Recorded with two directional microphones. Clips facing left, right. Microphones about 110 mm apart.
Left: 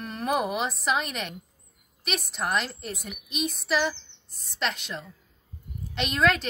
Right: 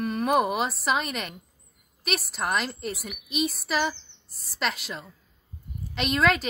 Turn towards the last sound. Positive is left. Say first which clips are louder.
# right 1 dB
turn(degrees=0)  # may be behind; listen again after turning